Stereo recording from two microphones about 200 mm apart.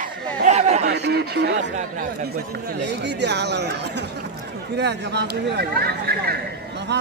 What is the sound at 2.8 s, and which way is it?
Speech, 60° right (ahead or behind).